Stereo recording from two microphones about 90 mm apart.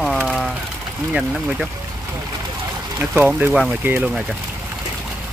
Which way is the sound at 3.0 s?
20° right (ahead or behind).